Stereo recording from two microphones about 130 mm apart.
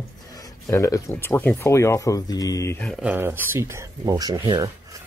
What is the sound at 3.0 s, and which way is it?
Speech, 15° right (ahead or behind).